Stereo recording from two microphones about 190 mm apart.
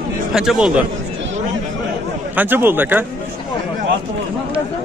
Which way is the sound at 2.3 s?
10° right (ahead or behind).